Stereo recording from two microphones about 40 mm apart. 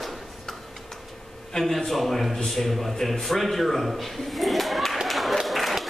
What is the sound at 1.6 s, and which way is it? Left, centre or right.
A man's voice, centre.